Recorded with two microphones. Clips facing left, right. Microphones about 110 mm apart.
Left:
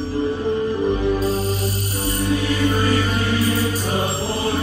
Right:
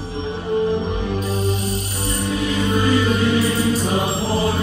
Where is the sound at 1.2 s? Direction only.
35° left (ahead or behind).